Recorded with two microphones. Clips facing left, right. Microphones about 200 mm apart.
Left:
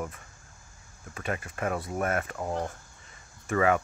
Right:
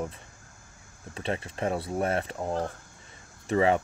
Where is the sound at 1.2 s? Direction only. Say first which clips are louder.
Right 2 dB; 25° right (ahead or behind).